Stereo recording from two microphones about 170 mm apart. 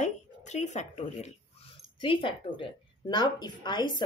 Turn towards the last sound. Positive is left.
turn(degrees=25)  # may be behind; listen again after turning